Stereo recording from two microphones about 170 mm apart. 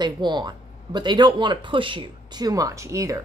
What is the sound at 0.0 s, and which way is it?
Speech, 25° right (ahead or behind).